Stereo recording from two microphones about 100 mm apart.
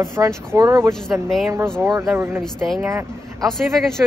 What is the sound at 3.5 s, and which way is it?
Speech, 5° left (ahead or behind).